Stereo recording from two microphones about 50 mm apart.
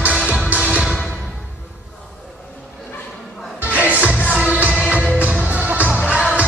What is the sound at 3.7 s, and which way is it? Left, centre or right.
Music, right.